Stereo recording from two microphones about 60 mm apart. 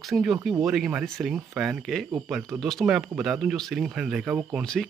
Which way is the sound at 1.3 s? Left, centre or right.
Centre.